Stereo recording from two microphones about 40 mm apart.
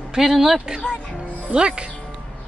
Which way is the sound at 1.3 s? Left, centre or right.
Right.